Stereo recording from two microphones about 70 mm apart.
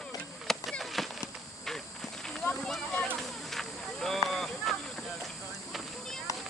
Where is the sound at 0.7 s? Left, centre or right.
Centre.